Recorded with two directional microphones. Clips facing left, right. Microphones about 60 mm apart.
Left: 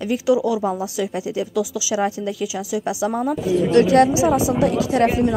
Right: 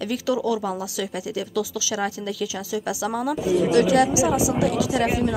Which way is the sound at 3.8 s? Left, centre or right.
Left.